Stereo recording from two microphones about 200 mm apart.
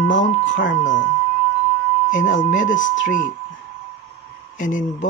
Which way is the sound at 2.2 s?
70° left (ahead or behind).